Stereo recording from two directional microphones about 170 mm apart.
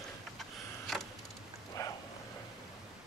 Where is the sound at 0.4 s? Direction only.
Centre (ahead or behind).